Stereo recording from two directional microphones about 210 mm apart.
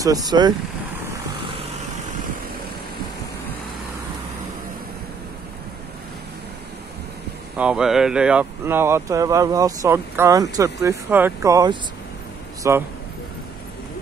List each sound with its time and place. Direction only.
0.0 s speech: 15° right (ahead or behind)
7.5 s speech: 5° right (ahead or behind)